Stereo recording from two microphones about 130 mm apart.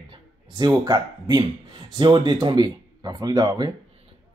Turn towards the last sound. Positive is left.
turn(degrees=-30)  # may be behind; listen again after turning